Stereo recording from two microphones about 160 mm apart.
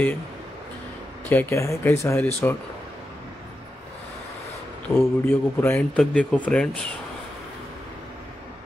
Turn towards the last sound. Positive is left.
turn(degrees=5)  # may be behind; listen again after turning